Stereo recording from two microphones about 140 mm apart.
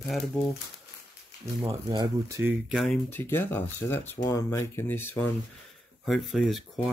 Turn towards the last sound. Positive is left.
turn(degrees=0)  # may be behind; listen again after turning